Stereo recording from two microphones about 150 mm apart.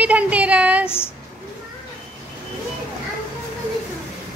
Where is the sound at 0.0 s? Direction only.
10° right (ahead or behind).